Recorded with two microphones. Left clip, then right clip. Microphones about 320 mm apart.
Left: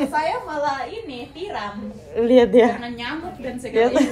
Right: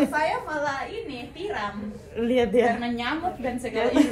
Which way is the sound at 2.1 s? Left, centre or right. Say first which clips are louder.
Left 8 dB; left.